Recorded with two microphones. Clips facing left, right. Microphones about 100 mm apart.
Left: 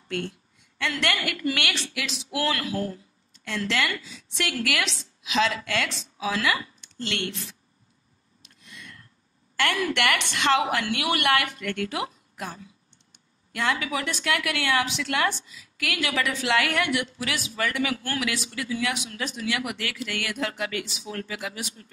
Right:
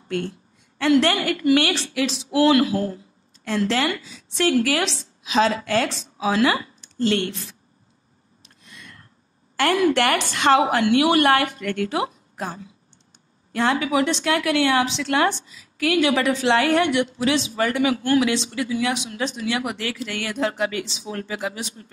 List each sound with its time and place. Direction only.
0.1 s a woman's voice: 35° right (ahead or behind)
8.4 s a sound: 35° right (ahead or behind)
9.6 s a woman's voice: 35° right (ahead or behind)